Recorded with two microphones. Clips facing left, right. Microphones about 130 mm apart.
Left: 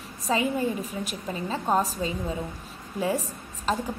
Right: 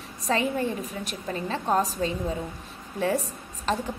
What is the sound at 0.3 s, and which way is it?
A woman's voice, 5° left (ahead or behind).